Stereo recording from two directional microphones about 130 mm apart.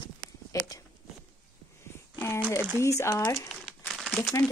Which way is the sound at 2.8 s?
20° left (ahead or behind).